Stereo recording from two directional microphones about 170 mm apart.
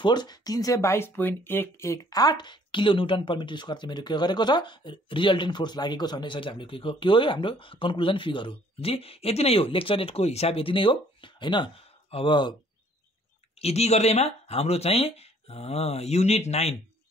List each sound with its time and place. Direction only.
0.0 s speech: 25° left (ahead or behind)
13.6 s speech: 40° left (ahead or behind)